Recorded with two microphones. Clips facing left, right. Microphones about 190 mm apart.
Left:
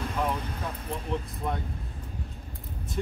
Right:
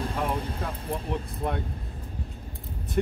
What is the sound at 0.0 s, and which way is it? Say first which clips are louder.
Vehicle: right 1 dB; 30° right (ahead or behind).